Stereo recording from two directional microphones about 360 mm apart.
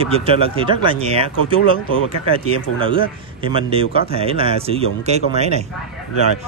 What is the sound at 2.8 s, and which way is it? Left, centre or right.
Speech, centre.